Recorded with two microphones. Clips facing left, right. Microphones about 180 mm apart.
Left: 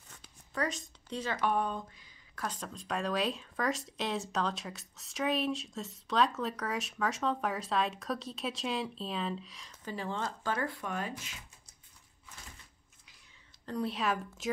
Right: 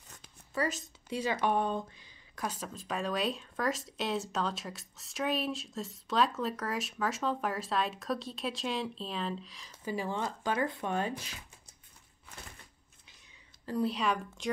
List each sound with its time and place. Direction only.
0.6 s speech: 5° right (ahead or behind)
1.5 s speech: 25° right (ahead or behind)
2.3 s speech: 10° right (ahead or behind)
9.8 s speech: 10° right (ahead or behind); by 11.3 s 30° right (ahead or behind)
13.7 s speech: centre (ahead or behind)